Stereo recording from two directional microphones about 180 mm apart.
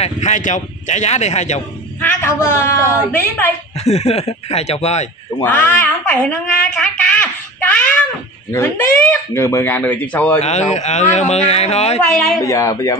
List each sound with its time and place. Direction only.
0.0 s speech: 40° left (ahead or behind)
2.0 s speech: 10° left (ahead or behind)
3.8 s speech: 35° left (ahead or behind)
5.4 s speech: 10° left (ahead or behind)
6.8 s a sound: 5° left (ahead or behind)
8.5 s speech: 15° left (ahead or behind)
10.7 s speech: 40° left (ahead or behind)
12.4 s speech: 15° left (ahead or behind)